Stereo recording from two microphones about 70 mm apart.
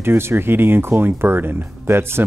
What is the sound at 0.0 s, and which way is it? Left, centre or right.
Speech, right.